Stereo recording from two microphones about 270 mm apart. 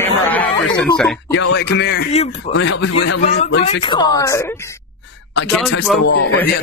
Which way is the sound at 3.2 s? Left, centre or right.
Left.